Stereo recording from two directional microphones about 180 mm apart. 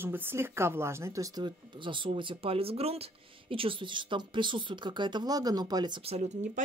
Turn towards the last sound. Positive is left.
turn(degrees=-35)  # may be behind; listen again after turning